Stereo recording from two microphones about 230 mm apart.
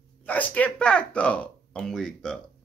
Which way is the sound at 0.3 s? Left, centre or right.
Centre.